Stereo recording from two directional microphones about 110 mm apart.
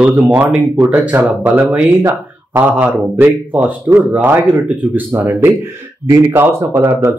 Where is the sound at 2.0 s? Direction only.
30° right (ahead or behind).